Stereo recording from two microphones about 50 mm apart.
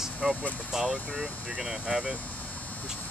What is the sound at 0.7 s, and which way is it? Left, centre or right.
Speech, centre.